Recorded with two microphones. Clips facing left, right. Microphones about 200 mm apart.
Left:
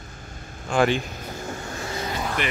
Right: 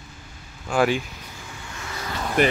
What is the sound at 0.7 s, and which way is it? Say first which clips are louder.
Speech: even; 5° right (ahead or behind).